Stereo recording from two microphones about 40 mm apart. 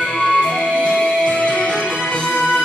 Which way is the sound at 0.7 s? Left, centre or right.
Left.